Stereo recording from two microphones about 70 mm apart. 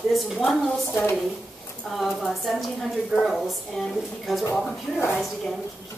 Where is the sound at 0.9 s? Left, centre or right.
Left.